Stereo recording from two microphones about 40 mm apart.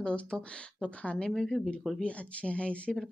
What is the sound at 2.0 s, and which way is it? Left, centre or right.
Speech, left.